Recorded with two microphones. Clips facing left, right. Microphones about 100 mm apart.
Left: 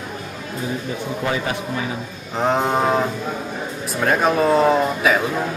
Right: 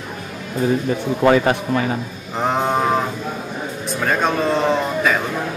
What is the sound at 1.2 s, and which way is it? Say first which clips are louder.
Speech: right 10 dB; 60° right (ahead or behind).